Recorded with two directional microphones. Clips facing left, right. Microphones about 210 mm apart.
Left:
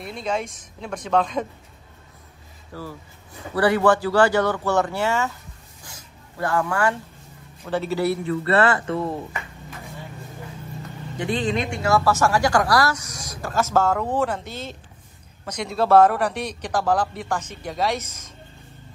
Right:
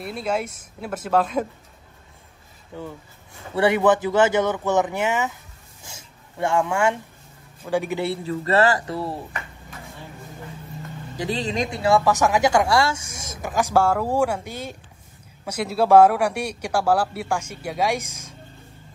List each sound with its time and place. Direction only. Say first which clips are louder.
0.0 s speech: right 1 dB; 5° right (ahead or behind)
2.7 s speech: right 1 dB; 20° right (ahead or behind)
5.9 s a sound: right 1 dB; 25° right (ahead or behind)
7.7 s speech: right 1 dB; 15° right (ahead or behind)
8.0 s speech: left 3 dB; 30° right (ahead or behind)
11.2 s speech: left 1 dB; 30° right (ahead or behind)
12.0 s speech: right 1 dB; 15° right (ahead or behind)